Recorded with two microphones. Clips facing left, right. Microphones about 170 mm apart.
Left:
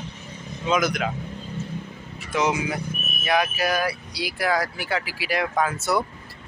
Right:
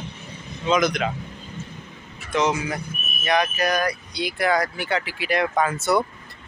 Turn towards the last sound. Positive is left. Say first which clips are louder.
# right 2 dB
turn(degrees=0)  # may be behind; listen again after turning